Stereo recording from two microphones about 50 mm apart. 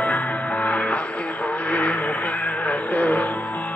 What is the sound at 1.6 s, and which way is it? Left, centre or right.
Vehicle, left.